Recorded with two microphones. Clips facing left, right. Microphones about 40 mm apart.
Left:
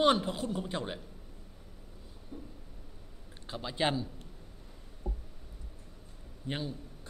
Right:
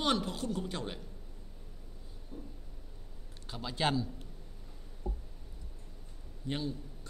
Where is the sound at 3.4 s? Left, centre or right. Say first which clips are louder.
Left 1 dB; centre.